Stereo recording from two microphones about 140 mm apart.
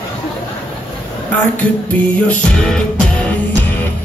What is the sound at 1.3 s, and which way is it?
Music, 10° left (ahead or behind).